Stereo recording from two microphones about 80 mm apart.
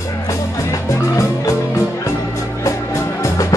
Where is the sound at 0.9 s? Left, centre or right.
Left.